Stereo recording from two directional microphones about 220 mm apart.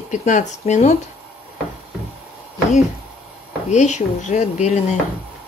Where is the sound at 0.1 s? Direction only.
35° left (ahead or behind).